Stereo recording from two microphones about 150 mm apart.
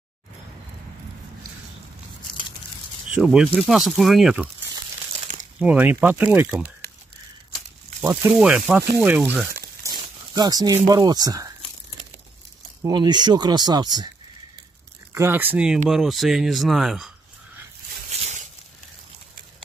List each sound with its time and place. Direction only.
3.2 s speech: 5° right (ahead or behind)
5.2 s crumpling: 55° right (ahead or behind)
5.6 s speech: 10° right (ahead or behind)
8.0 s speech: 15° right (ahead or behind)
10.3 s speech: 25° right (ahead or behind)
12.8 s speech: 30° right (ahead or behind)
15.1 s speech: 15° right (ahead or behind)